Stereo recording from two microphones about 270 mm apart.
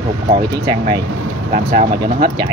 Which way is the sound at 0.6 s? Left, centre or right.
Centre.